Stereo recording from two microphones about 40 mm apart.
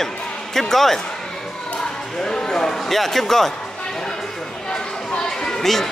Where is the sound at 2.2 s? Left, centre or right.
Centre.